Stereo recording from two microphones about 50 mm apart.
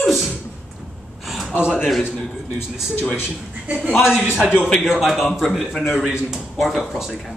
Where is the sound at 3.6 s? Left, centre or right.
Right.